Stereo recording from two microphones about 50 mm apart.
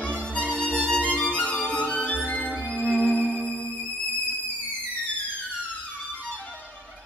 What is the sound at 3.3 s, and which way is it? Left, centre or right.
Music, left.